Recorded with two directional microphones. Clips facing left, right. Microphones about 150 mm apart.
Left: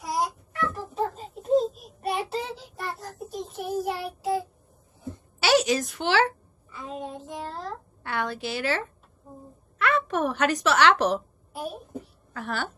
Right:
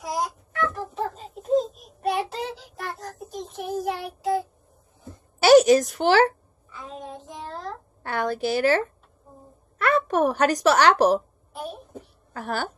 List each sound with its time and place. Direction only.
0.0 s a sound: 5° left (ahead or behind)
1.1 s child singing: centre (ahead or behind)
5.4 s a woman's voice: 45° right (ahead or behind)
6.7 s child singing: centre (ahead or behind)
8.0 s a sound: 40° right (ahead or behind)
9.8 s a woman's voice: 40° right (ahead or behind)
12.4 s a woman's voice: 40° right (ahead or behind)